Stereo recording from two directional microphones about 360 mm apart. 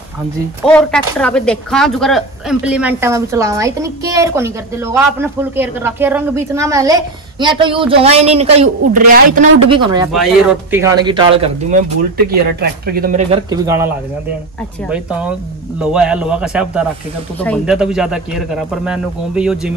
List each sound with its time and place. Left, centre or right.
0.7 s speech: centre
12.3 s speech: right; by 13.8 s centre
14.9 s speech: centre